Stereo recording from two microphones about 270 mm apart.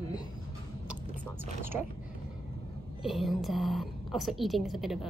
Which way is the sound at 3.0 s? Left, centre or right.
Centre.